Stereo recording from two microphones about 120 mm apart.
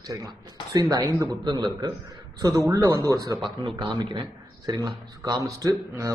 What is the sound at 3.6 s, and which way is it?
Speech, 40° right (ahead or behind).